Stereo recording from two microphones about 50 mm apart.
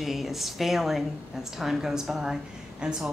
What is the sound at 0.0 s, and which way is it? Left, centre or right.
A woman's voice, centre.